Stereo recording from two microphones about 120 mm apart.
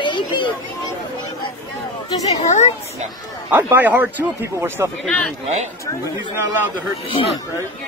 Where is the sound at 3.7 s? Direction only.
15° right (ahead or behind).